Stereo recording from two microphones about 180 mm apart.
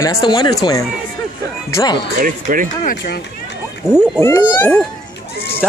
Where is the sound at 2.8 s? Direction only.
60° left (ahead or behind).